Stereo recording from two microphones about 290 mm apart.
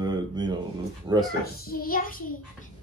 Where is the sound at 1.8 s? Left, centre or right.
Left.